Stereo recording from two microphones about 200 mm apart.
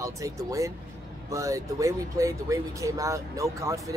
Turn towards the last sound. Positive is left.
turn(degrees=-15)  # may be behind; listen again after turning